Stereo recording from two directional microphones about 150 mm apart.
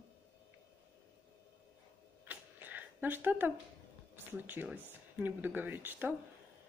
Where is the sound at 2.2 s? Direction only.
10° right (ahead or behind).